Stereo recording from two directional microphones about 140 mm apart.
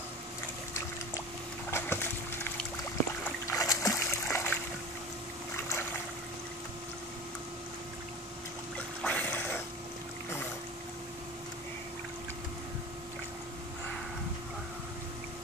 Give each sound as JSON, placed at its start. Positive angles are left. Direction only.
{"t": 1.7, "sound": "boat", "side_deg": 15}
{"t": 3.4, "sound": "splash", "side_deg": 25}
{"t": 8.7, "sound": "a sound", "side_deg": 10}